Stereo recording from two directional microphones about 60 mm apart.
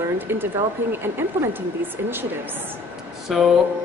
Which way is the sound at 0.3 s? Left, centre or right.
Right.